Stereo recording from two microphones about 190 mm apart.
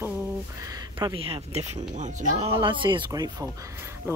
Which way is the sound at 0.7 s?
20° right (ahead or behind).